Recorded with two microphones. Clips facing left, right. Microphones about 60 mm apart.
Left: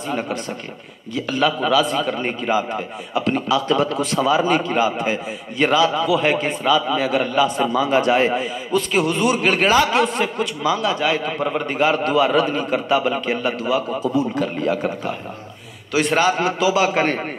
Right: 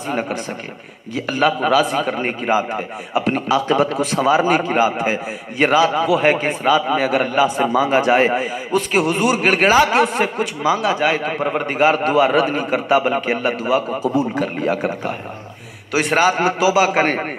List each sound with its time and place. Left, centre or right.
1.4 s a man's voice: right
7.7 s a man's voice: right
9.4 s a man's voice: right
13.8 s a man's voice: centre